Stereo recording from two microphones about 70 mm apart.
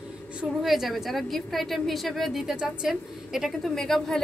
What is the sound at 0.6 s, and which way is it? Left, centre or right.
A woman's voice, centre.